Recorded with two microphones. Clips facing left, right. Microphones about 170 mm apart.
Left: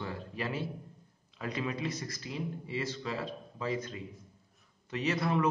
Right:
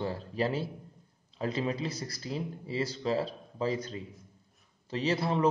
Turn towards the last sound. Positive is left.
turn(degrees=-30)  # may be behind; listen again after turning